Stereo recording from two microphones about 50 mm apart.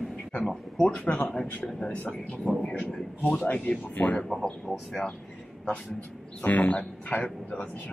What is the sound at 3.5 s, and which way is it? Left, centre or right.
Speech, left.